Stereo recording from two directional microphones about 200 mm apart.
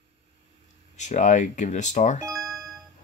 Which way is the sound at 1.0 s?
35° left (ahead or behind).